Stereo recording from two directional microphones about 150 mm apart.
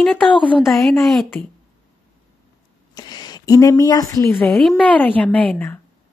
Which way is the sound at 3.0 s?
25° left (ahead or behind).